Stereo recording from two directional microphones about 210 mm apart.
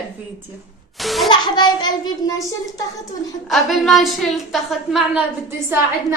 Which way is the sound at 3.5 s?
Centre (ahead or behind).